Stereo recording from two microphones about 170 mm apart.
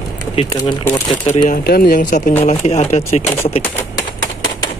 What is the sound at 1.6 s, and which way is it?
Speech, 60° left (ahead or behind).